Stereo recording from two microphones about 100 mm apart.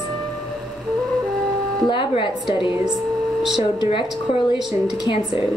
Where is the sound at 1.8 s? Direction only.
55° left (ahead or behind).